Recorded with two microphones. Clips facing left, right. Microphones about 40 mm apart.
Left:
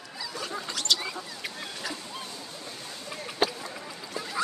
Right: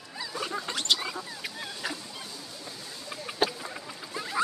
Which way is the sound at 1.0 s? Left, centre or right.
Centre.